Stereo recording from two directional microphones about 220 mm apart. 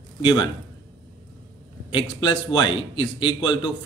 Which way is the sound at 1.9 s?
20° left (ahead or behind).